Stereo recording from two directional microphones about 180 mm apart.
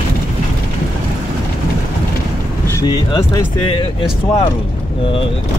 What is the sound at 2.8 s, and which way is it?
Speech, 25° left (ahead or behind).